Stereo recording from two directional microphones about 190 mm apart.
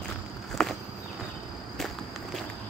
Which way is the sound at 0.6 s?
5° left (ahead or behind).